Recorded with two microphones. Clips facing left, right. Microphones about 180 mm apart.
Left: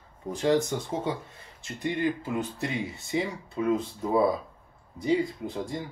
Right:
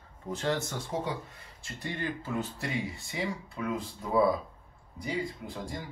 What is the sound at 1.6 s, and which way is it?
Speech, 15° left (ahead or behind).